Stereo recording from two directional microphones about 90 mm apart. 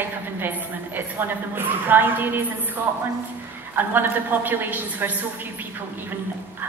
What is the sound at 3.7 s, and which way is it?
A woman's voice, 20° right (ahead or behind).